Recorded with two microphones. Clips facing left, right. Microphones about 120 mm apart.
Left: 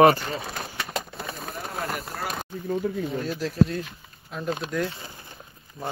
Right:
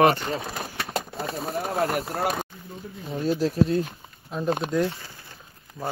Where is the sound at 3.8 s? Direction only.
30° right (ahead or behind).